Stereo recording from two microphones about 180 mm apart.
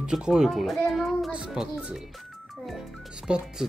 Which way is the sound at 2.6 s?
Centre (ahead or behind).